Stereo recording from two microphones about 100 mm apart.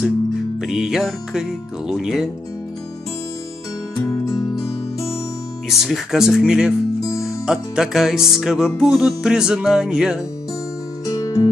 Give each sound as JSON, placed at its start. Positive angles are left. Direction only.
{"t": 0.6, "sound": "speech", "side_deg": -5}
{"t": 3.9, "sound": "music", "side_deg": 35}
{"t": 5.7, "sound": "speech", "side_deg": 0}
{"t": 11.1, "sound": "music", "side_deg": 35}